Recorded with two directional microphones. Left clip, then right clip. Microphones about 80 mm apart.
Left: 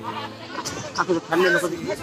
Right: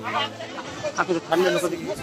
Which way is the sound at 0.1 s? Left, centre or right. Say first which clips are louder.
Right 8 dB; left.